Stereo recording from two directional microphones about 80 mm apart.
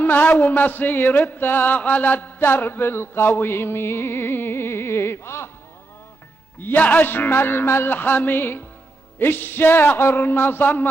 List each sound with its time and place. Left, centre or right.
0.0 s mantra: left
6.6 s mantra: left